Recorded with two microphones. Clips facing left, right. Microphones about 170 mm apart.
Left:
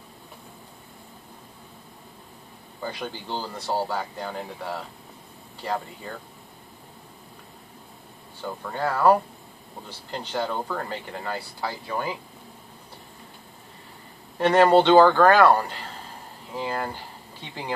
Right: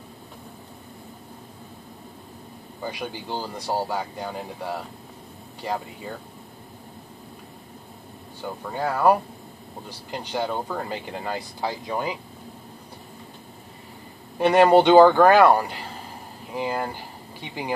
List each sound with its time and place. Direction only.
2.8 s speech: 15° right (ahead or behind)
8.4 s speech: 15° right (ahead or behind)
14.4 s speech: 10° right (ahead or behind)